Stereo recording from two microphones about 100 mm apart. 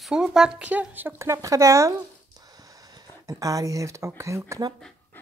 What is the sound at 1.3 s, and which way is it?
Speech, 35° right (ahead or behind).